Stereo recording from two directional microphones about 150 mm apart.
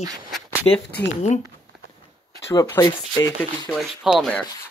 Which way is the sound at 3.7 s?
Centre (ahead or behind).